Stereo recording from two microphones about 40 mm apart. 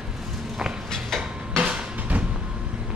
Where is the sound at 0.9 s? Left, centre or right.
Centre.